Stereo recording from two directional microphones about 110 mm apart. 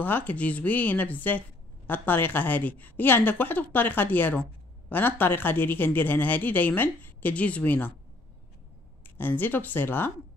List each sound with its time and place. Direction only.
0.0 s a man's voice: 15° left (ahead or behind)
9.0 s a man's voice: 15° left (ahead or behind)